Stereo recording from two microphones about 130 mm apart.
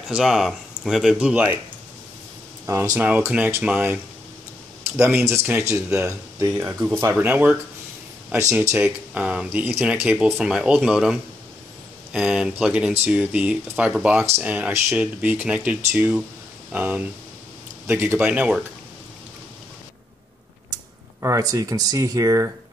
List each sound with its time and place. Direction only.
0.1 s speech: 5° right (ahead or behind)
2.6 s speech: 25° right (ahead or behind)
8.7 s speech: 10° right (ahead or behind)
21.2 s speech: 25° right (ahead or behind)